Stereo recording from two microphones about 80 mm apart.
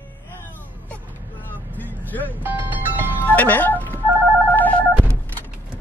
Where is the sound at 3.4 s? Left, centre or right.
Left.